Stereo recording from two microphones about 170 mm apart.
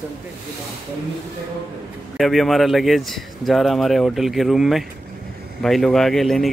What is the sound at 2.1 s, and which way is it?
Speech, centre (ahead or behind).